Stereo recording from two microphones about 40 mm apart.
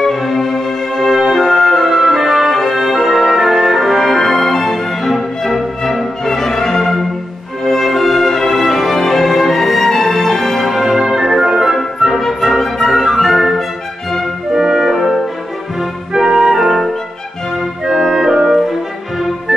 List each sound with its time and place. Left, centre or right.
0.0 s music: centre
12.2 s music: centre
12.9 s music: centre
13.2 s music: centre
14.5 s brass instrument: centre
16.1 s clarinet: centre
16.6 s music: centre
17.8 s music: centre